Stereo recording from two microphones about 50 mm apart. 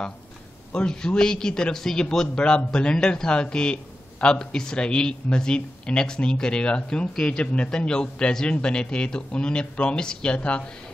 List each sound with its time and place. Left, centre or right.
0.7 s a man's voice: centre